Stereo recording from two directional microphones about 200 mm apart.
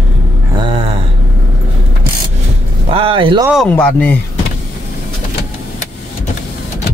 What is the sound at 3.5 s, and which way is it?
Speech, 5° left (ahead or behind).